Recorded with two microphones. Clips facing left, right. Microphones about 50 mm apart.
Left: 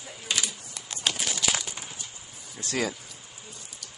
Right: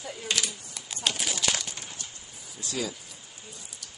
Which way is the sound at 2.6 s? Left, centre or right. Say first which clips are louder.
Left 4 dB; left.